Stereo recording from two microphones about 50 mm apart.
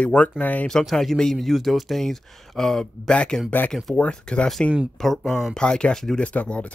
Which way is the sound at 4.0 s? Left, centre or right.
Left.